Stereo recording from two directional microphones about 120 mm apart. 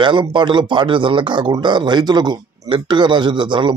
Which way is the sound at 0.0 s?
40° right (ahead or behind).